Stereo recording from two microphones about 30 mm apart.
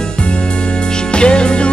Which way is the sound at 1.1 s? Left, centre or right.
Left.